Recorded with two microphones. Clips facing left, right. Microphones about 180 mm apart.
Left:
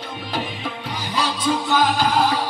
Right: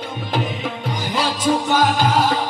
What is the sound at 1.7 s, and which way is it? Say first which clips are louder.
Music: right 2 dB; 45° right (ahead or behind).